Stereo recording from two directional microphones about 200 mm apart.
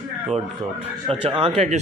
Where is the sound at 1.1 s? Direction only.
30° right (ahead or behind).